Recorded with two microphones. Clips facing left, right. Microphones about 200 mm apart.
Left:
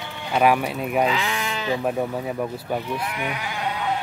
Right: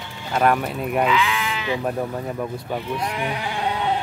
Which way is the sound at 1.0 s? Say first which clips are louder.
Right 4 dB; 35° left (ahead or behind).